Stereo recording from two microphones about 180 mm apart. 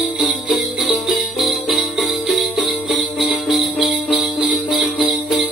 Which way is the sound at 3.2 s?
Centre (ahead or behind).